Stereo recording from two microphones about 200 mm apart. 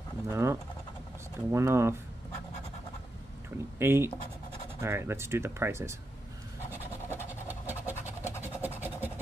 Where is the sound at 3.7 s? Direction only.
10° right (ahead or behind).